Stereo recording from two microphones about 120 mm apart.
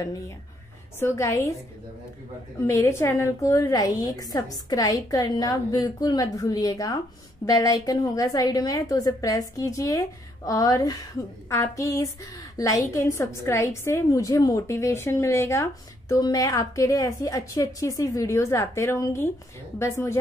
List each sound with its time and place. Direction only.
0.9 s a woman's voice: 20° left (ahead or behind)
2.6 s a woman's voice: 25° left (ahead or behind)